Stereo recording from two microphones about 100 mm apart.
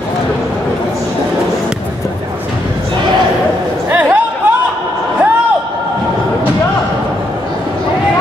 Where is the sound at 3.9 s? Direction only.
20° right (ahead or behind).